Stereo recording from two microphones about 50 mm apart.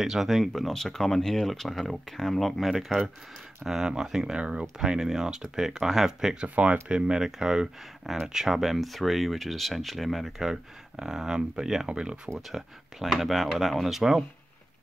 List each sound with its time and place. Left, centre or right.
0.0 s speech: centre
6.4 s speech: right
12.4 s speech: centre